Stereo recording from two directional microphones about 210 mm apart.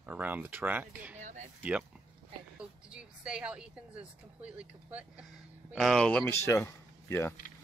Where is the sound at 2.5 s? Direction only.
5° right (ahead or behind).